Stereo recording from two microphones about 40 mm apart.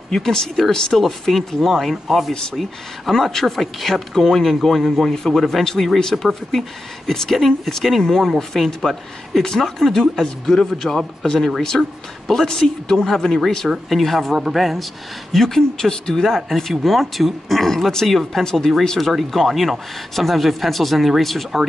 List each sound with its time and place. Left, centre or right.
0.1 s speech: centre
3.1 s speech: centre
5.1 s speech: centre
11.7 s speech: centre
12.4 s speech: centre
14.3 s speech: centre
15.3 s speech: centre
18.9 s speech: centre